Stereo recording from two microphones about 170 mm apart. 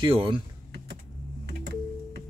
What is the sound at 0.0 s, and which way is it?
Speech, 30° right (ahead or behind).